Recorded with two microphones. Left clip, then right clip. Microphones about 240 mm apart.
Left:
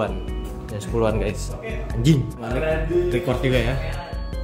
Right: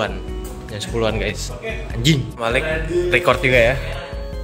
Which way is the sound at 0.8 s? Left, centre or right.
Centre.